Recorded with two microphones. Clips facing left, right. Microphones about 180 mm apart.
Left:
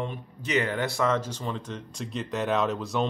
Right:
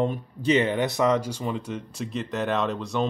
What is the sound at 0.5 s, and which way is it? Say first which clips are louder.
Speech: right 4 dB; 20° right (ahead or behind).